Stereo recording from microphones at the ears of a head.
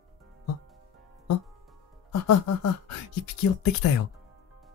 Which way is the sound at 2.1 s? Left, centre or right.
Left.